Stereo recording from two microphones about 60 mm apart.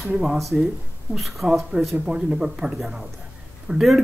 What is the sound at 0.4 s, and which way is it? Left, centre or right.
Speech, centre.